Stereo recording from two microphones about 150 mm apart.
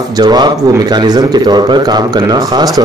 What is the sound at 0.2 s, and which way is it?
Speech, 25° right (ahead or behind).